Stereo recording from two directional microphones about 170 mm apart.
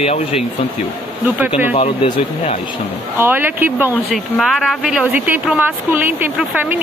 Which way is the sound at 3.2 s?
10° right (ahead or behind).